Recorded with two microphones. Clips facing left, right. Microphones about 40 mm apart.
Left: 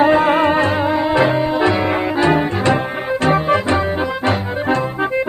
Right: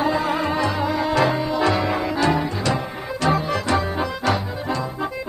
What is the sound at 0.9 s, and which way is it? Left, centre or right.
Music, left.